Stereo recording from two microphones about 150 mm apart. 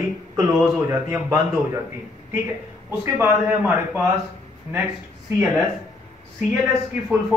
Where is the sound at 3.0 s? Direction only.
15° right (ahead or behind).